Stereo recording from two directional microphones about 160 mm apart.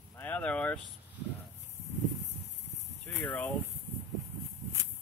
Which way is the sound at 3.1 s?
10° left (ahead or behind).